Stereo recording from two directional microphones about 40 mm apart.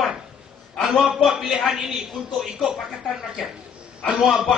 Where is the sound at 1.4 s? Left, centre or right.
Centre.